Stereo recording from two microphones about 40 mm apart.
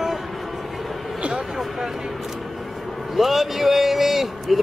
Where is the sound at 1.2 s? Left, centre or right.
Right.